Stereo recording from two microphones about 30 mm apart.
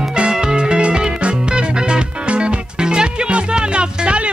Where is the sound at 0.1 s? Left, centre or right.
Right.